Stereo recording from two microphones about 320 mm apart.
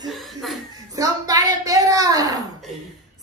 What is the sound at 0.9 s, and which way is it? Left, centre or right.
Speech, centre.